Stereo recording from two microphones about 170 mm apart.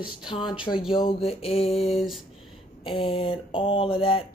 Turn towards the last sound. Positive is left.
turn(degrees=30)  # may be behind; listen again after turning